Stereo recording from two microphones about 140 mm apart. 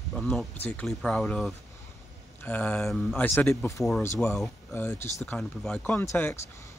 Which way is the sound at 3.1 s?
15° left (ahead or behind).